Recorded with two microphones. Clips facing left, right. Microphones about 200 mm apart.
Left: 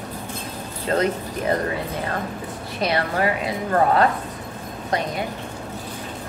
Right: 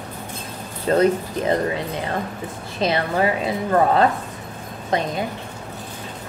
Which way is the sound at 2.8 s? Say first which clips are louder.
Right 2 dB; 25° right (ahead or behind).